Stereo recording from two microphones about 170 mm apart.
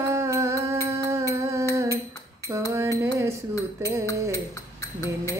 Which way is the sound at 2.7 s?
15° right (ahead or behind).